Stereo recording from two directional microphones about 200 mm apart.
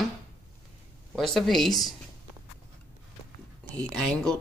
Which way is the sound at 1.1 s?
Centre (ahead or behind).